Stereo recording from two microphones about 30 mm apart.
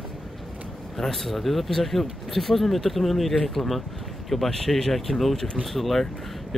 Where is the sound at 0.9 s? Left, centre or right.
Centre.